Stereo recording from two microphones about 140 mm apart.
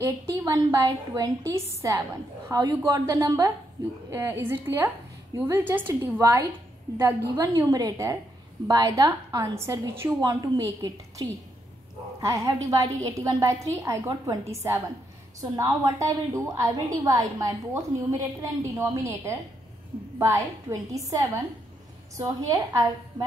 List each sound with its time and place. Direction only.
0.0 s a woman's voice: 20° right (ahead or behind)